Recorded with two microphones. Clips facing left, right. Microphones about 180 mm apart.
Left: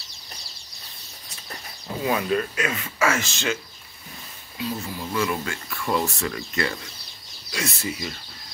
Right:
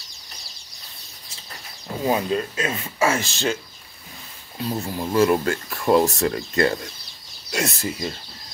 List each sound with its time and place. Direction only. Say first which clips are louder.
2.0 s speech: right 2 dB; 25° right (ahead or behind)
4.6 s speech: right 3 dB; 40° right (ahead or behind)